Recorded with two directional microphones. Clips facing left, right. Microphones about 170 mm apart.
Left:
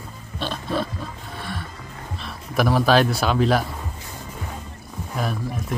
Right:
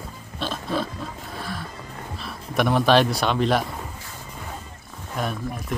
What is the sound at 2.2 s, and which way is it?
Speech, centre (ahead or behind).